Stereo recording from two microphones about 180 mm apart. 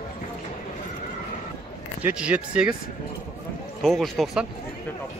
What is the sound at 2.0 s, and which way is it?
Speech, 5° right (ahead or behind).